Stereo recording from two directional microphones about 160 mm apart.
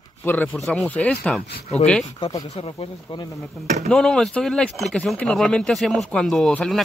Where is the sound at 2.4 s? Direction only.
40° left (ahead or behind).